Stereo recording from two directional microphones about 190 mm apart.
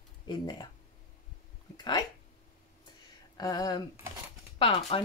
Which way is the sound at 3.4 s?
20° left (ahead or behind).